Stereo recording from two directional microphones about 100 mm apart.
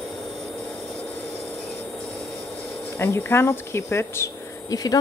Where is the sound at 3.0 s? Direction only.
25° left (ahead or behind).